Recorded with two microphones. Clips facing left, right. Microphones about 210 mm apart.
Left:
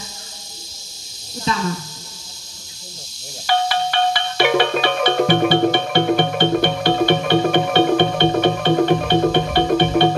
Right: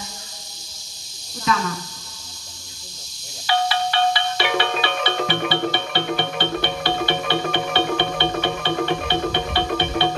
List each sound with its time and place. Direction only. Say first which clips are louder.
1.5 s speech: even; 30° left (ahead or behind)
3.4 s music: left 2 dB; 50° left (ahead or behind)